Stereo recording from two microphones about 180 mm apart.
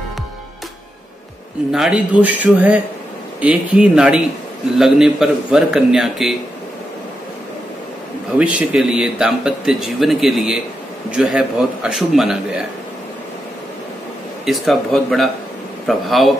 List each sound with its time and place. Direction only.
1.7 s speech: 5° right (ahead or behind)
8.4 s speech: 5° right (ahead or behind)
14.4 s speech: centre (ahead or behind)